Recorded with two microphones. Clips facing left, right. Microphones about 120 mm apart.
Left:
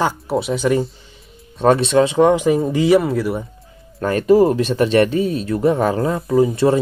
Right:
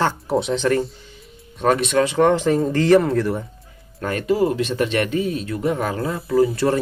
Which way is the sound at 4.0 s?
35° left (ahead or behind).